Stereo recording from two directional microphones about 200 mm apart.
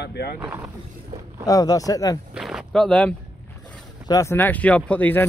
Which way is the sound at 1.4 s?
20° left (ahead or behind).